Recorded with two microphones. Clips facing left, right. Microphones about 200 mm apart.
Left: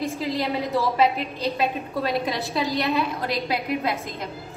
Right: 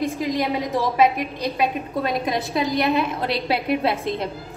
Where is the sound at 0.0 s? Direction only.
15° right (ahead or behind).